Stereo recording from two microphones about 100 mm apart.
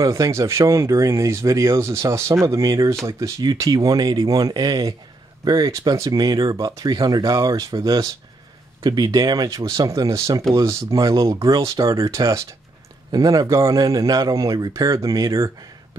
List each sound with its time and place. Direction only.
0.0 s speech: 35° right (ahead or behind)